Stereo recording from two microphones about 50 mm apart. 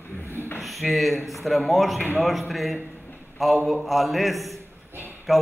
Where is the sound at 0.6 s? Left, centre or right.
Centre.